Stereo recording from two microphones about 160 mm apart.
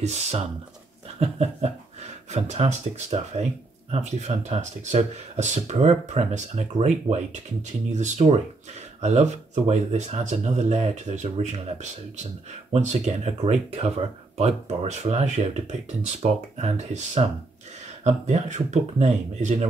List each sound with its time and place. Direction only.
0.0 s speech: 45° right (ahead or behind)